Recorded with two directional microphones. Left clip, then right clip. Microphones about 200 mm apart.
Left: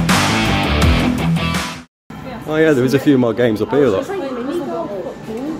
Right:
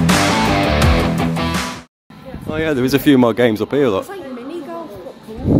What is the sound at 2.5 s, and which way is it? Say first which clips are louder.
Speech: left 4 dB; 25° right (ahead or behind).